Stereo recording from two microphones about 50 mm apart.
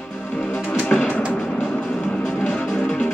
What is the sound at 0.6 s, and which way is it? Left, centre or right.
Music, left.